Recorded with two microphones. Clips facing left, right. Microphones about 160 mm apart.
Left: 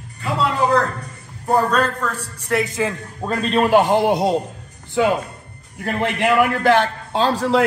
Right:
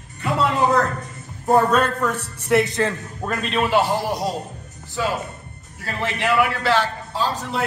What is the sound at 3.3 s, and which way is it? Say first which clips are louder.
Speech: left 5 dB; 35° left (ahead or behind).